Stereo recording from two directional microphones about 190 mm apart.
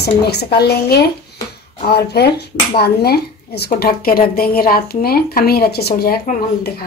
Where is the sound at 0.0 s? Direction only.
60° left (ahead or behind).